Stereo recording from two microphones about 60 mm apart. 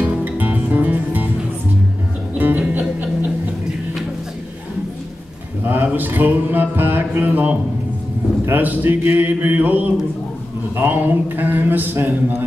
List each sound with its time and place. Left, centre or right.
0.0 s music: right
2.3 s music: right
5.9 s music: right
8.5 s a man's voice: right